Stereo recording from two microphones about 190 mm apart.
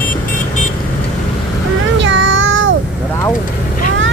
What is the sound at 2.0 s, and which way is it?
Child singing, 75° right (ahead or behind).